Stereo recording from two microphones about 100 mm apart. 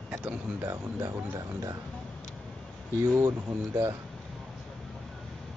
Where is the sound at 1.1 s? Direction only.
40° right (ahead or behind).